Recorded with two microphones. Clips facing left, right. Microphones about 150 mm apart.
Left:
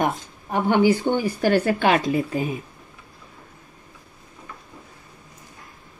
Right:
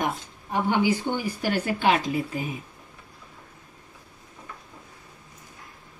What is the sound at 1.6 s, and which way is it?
Speech, 60° left (ahead or behind).